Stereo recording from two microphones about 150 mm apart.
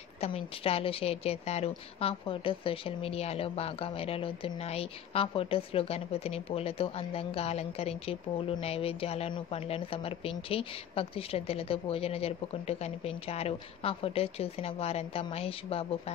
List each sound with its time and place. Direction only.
0.2 s a woman's voice: 40° left (ahead or behind)